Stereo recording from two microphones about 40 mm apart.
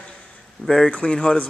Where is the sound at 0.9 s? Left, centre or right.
Left.